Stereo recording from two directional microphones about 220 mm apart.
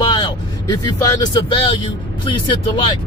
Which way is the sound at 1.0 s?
20° left (ahead or behind).